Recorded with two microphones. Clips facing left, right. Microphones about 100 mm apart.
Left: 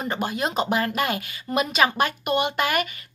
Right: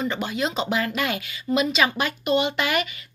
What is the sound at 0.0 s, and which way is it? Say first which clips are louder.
Speech: even; 40° left (ahead or behind).